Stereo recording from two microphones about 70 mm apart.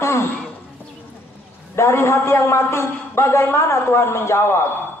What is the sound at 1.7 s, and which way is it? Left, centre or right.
A man's voice, left.